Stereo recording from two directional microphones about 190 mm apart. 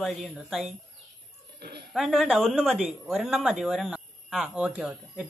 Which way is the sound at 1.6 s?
55° right (ahead or behind).